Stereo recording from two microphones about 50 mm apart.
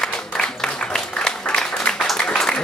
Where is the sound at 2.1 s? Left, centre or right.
Centre.